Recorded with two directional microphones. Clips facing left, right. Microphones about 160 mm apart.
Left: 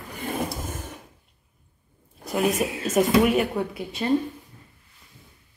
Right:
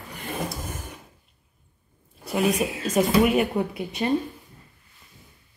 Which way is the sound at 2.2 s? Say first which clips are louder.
Even; centre (ahead or behind).